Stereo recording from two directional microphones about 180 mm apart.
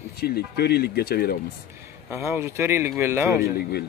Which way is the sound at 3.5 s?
60° left (ahead or behind).